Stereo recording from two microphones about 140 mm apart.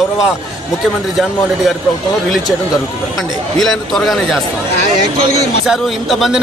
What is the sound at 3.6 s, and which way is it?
Speech, centre (ahead or behind).